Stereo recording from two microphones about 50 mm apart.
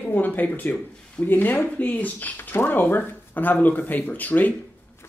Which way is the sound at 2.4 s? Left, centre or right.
Left.